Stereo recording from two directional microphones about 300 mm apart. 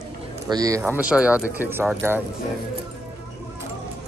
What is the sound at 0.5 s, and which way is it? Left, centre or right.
Speech, centre.